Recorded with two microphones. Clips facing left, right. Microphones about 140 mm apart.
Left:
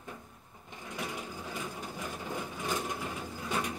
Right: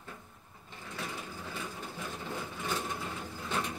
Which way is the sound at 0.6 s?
15° left (ahead or behind).